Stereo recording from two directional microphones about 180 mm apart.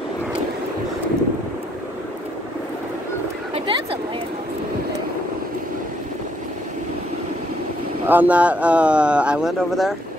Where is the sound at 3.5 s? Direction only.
30° right (ahead or behind).